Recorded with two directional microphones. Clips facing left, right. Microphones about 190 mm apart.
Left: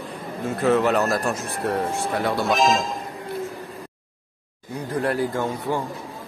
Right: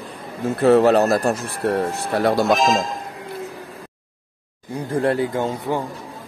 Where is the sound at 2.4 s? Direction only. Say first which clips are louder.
Right 2 dB; centre (ahead or behind).